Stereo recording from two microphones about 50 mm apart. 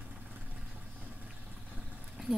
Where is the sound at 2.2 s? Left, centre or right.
Centre.